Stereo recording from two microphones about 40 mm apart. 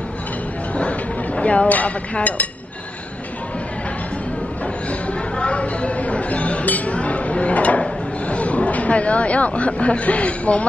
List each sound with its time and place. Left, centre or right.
0.7 s a sound: left
2.1 s speech: left
5.4 s chink: left
7.8 s speech: left